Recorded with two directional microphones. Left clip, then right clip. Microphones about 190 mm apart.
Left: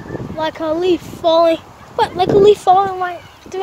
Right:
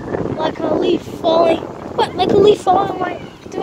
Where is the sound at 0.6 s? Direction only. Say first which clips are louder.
Right 1 dB; 40° left (ahead or behind).